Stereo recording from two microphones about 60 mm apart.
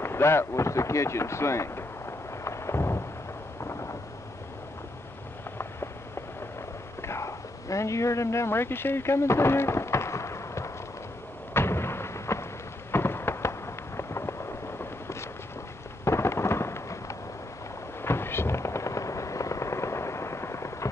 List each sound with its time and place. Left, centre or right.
0.0 s a sound: left
3.6 s thunder: left
7.0 s a sound: left
12.9 s fireworks: left
16.0 s thunder: left
18.0 s fireworks: left